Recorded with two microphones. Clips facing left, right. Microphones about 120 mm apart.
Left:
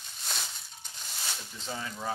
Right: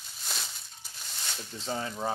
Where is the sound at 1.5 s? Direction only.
35° right (ahead or behind).